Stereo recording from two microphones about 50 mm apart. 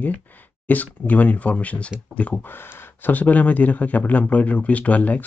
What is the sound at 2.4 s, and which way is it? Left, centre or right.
Speech, left.